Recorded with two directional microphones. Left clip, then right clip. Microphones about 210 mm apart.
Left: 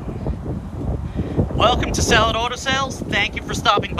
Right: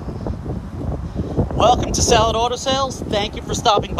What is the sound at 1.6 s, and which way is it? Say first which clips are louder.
Speech: right 3 dB; 15° right (ahead or behind).